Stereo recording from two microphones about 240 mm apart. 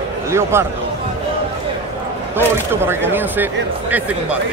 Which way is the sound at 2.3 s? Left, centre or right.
Centre.